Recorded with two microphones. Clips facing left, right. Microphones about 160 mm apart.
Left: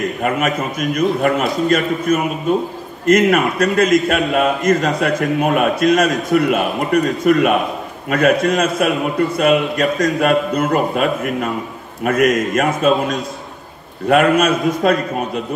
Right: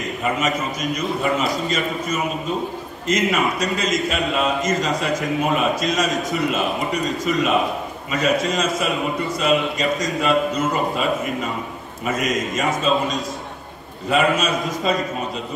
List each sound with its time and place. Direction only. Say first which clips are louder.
0.6 s a man's voice: left 6 dB; 55° left (ahead or behind)
14.0 s a man's voice: left 6 dB; 60° left (ahead or behind)